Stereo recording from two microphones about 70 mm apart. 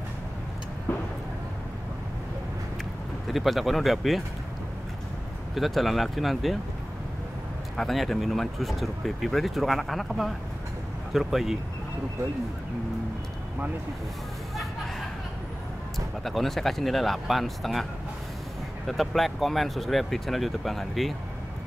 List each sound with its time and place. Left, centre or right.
0.9 s vehicle: left
3.3 s speech: centre
5.5 s speech: centre
7.7 s speech: centre
16.3 s speech: centre
18.9 s speech: centre